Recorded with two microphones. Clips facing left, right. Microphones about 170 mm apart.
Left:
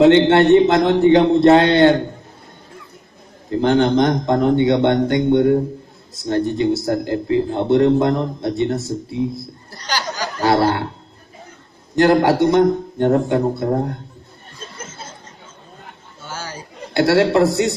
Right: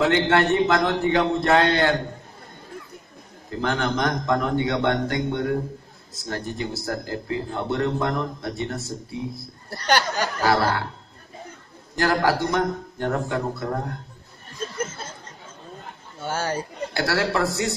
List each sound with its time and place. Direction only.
0.0 s speech: 25° left (ahead or behind)
3.6 s speech: 25° left (ahead or behind)
9.7 s speech: 60° right (ahead or behind)
10.4 s speech: 25° left (ahead or behind)
11.9 s speech: 20° left (ahead or behind)
16.3 s a sound: 55° right (ahead or behind)
16.9 s speech: 25° left (ahead or behind)